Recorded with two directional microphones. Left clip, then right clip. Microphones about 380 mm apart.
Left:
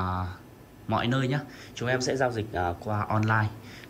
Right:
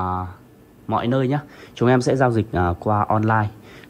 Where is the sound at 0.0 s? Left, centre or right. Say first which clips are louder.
Right 7 dB; centre.